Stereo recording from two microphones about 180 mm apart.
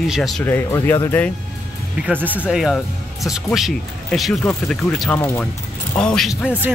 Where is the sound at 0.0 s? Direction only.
Centre (ahead or behind).